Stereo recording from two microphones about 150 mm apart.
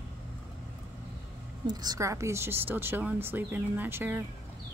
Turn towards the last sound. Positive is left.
turn(degrees=-15)  # may be behind; listen again after turning